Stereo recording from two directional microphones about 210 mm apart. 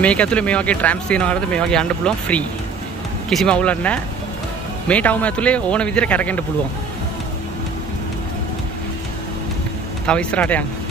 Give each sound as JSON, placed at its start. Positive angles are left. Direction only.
{"t": 0.0, "sound": "speech", "side_deg": 5}
{"t": 10.0, "sound": "speech", "side_deg": 5}